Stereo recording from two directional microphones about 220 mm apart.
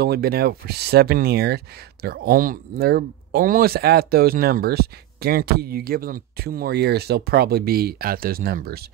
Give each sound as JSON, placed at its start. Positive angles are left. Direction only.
{"t": 0.0, "sound": "speech", "side_deg": -45}